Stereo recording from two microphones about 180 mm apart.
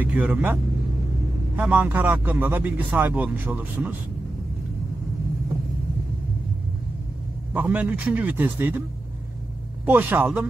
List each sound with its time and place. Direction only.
0.0 s speech: 10° right (ahead or behind)
1.6 s speech: 10° right (ahead or behind)
7.5 s speech: 10° right (ahead or behind)
9.8 s speech: 10° right (ahead or behind)